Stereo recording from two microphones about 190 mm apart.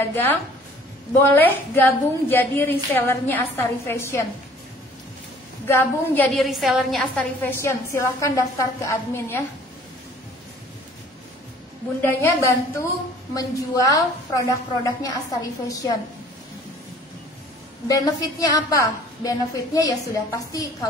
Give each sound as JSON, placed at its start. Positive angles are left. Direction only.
{"t": 0.0, "sound": "a woman's voice", "side_deg": 10}
{"t": 5.7, "sound": "a woman's voice", "side_deg": 10}
{"t": 12.0, "sound": "a woman's voice", "side_deg": 15}
{"t": 17.8, "sound": "a woman's voice", "side_deg": 20}